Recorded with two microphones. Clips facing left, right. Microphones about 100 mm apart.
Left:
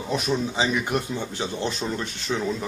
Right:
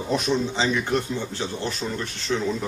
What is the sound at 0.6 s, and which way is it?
Speech, 15° left (ahead or behind).